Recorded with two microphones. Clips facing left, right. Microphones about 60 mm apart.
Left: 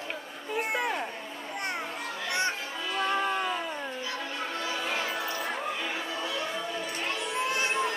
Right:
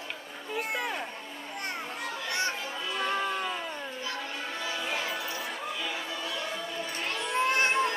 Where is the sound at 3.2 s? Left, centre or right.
Centre.